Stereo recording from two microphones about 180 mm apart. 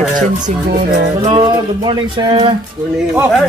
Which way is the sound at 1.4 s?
25° right (ahead or behind).